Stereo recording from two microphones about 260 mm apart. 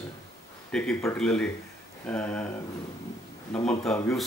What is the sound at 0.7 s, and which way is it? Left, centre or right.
Speech, centre.